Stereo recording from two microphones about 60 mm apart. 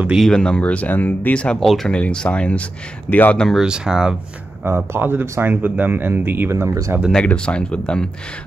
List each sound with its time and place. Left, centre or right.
0.2 s speech: centre; by 1.3 s left
1.3 s speech: centre
1.6 s speech: centre
1.9 s speech: centre
3.5 s speech: centre
4.6 s speech: right
6.5 s speech: right
7.1 s speech: centre